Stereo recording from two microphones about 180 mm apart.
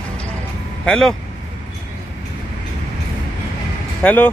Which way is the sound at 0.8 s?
5° left (ahead or behind).